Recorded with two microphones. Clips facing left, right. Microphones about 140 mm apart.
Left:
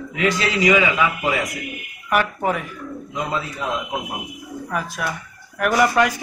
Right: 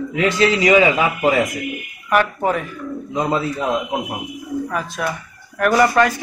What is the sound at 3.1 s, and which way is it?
Speech, 40° right (ahead or behind).